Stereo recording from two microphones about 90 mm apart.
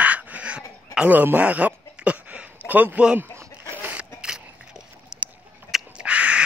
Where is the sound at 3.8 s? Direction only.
10° right (ahead or behind).